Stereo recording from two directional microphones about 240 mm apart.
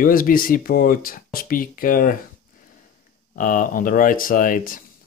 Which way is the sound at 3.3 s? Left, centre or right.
Left.